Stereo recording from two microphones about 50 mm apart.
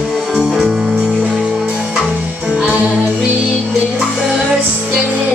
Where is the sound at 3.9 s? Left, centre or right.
Centre.